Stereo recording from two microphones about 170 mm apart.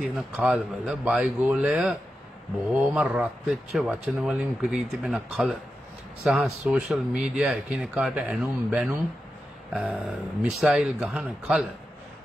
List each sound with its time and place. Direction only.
0.0 s speech: centre (ahead or behind)